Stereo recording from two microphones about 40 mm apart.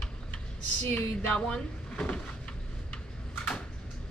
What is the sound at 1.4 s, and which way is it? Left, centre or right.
Speech, left.